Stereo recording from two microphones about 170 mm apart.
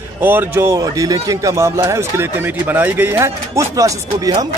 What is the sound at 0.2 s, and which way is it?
Speech, 10° right (ahead or behind).